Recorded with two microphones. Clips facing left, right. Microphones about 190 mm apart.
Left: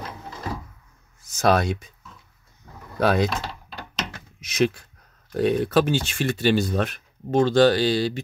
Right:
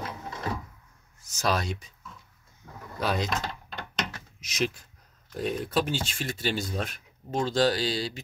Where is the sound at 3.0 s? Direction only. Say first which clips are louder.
Left 8 dB; 60° left (ahead or behind).